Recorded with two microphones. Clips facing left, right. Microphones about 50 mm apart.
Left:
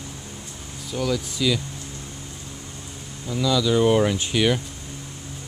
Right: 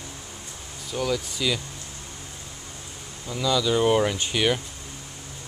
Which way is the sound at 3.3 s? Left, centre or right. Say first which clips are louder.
Left 2 dB; centre.